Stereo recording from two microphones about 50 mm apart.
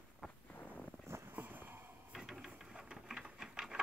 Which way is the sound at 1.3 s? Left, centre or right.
Right.